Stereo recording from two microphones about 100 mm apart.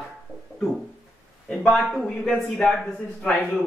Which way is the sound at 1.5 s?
5° left (ahead or behind).